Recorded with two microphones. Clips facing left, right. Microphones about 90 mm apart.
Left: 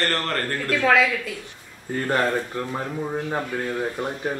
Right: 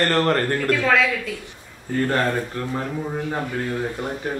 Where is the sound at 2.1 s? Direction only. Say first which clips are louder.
Left 3 dB; 10° left (ahead or behind).